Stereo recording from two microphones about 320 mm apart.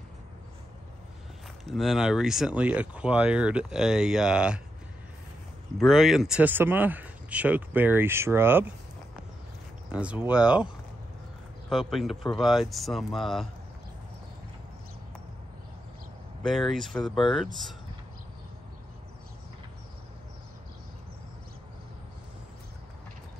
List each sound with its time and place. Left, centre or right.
1.6 s speech: centre
5.8 s speech: centre
9.8 s speech: centre
11.7 s speech: centre
16.4 s speech: centre